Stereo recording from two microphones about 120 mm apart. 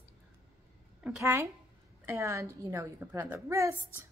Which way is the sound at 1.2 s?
25° right (ahead or behind).